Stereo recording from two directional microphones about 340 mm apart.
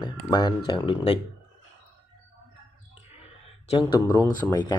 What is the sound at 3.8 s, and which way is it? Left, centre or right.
Speech, centre.